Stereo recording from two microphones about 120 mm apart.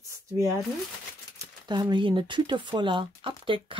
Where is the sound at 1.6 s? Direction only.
40° right (ahead or behind).